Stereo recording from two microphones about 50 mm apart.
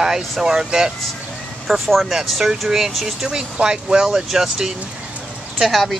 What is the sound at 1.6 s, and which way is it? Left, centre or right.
Speech, centre.